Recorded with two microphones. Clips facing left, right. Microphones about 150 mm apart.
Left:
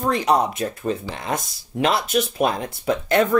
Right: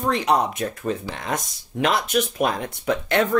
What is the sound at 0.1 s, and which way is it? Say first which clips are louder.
Speech: left 1 dB; 35° left (ahead or behind).